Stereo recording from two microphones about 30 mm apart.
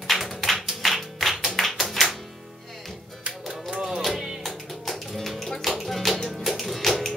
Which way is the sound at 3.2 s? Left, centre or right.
Right.